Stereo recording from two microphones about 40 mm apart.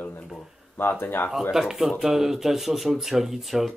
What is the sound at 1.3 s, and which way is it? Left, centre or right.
Speech, centre.